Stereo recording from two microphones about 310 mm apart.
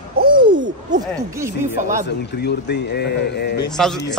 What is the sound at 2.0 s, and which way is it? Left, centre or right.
A man's voice, left.